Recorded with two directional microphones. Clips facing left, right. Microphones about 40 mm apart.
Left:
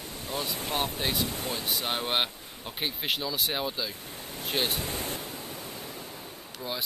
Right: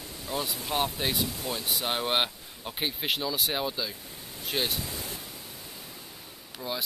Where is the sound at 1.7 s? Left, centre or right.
Centre.